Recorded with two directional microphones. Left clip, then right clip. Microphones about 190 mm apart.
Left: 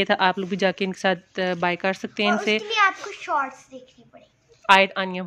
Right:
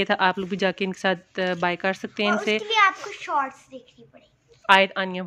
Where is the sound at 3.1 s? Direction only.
10° right (ahead or behind).